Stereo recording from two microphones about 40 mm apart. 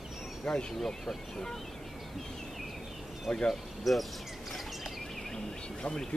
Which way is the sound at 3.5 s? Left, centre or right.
Centre.